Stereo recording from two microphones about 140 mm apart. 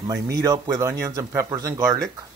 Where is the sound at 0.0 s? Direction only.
25° right (ahead or behind).